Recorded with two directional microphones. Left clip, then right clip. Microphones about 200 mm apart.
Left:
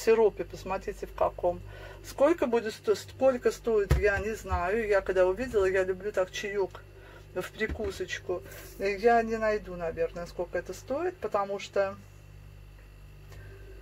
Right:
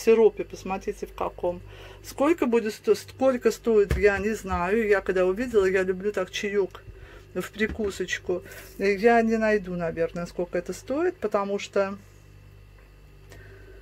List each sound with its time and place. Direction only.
0.1 s speech: 40° right (ahead or behind); by 11.9 s 55° right (ahead or behind)